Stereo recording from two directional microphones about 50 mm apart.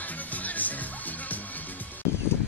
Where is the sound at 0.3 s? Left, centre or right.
Left.